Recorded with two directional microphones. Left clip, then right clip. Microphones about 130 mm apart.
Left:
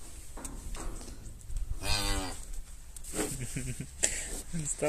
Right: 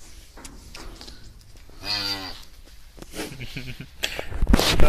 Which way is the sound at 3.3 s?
5° right (ahead or behind).